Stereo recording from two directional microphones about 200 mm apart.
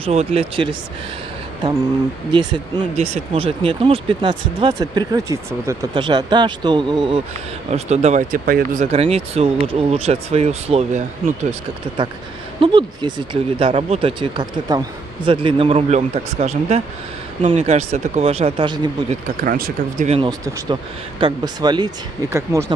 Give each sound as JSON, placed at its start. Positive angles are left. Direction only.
{"t": 0.0, "sound": "speech", "side_deg": -30}
{"t": 3.0, "sound": "speech", "side_deg": -30}
{"t": 7.7, "sound": "speech", "side_deg": -35}
{"t": 8.9, "sound": "speech", "side_deg": -30}
{"t": 12.5, "sound": "speech", "side_deg": -25}
{"t": 19.4, "sound": "speech", "side_deg": -45}
{"t": 20.1, "sound": "speech", "side_deg": -25}